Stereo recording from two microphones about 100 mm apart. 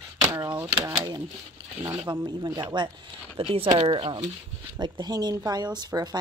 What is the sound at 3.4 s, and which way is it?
Speech, 70° right (ahead or behind).